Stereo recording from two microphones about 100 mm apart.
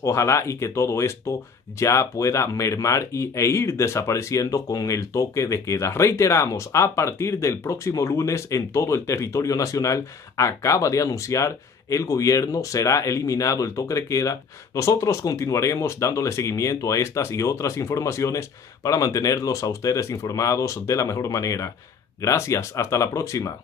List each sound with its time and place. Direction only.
0.0 s speech: 30° left (ahead or behind)